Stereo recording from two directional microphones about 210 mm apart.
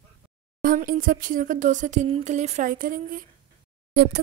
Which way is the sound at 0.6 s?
40° right (ahead or behind).